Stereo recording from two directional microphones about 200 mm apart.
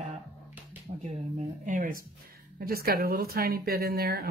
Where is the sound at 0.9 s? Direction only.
30° right (ahead or behind).